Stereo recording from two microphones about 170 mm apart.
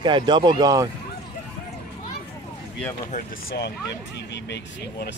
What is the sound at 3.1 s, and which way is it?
Speech, 45° left (ahead or behind).